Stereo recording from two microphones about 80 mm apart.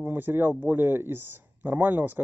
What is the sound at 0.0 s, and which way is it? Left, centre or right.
Speech, right.